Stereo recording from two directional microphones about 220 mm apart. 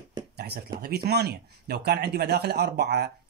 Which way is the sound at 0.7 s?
45° right (ahead or behind).